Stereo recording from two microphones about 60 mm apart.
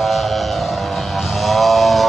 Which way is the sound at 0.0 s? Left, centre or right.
Centre.